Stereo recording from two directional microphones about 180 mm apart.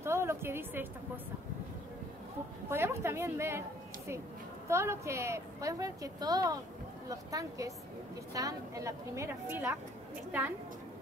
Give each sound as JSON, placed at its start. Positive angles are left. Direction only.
{"t": 0.0, "sound": "a woman's voice", "side_deg": -15}
{"t": 2.7, "sound": "a woman's voice", "side_deg": -15}
{"t": 4.6, "sound": "a woman's voice", "side_deg": -15}